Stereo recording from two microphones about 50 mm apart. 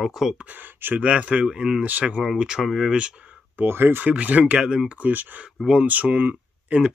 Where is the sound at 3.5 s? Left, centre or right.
Right.